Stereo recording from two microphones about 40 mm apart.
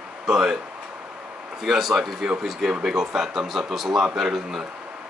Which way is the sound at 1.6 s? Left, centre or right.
Centre.